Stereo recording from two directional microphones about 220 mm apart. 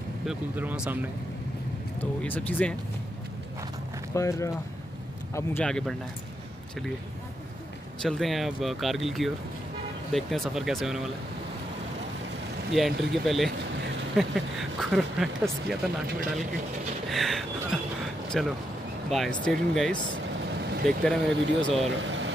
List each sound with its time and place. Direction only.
0.3 s speech: 5° right (ahead or behind)
2.0 s speech: 10° left (ahead or behind)
4.1 s speech: 15° left (ahead or behind)
8.0 s speech: centre (ahead or behind)
12.7 s speech: centre (ahead or behind)
17.1 s speech: centre (ahead or behind)
21.0 s speech: 5° left (ahead or behind)
21.9 s vehicle: 55° right (ahead or behind)